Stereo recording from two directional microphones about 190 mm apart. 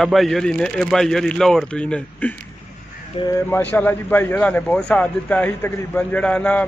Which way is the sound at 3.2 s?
30° left (ahead or behind).